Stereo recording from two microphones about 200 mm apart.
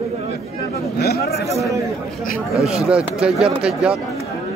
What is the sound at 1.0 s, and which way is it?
Speech, 50° left (ahead or behind).